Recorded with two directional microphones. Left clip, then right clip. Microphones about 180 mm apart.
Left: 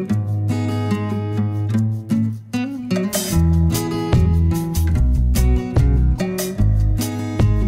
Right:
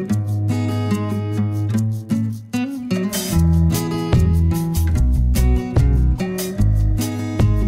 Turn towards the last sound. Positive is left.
turn(degrees=0)  # may be behind; listen again after turning